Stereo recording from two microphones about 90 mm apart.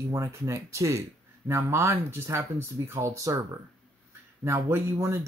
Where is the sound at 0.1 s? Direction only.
35° right (ahead or behind).